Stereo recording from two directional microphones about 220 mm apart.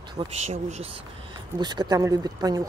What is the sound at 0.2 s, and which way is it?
Speech, 30° right (ahead or behind).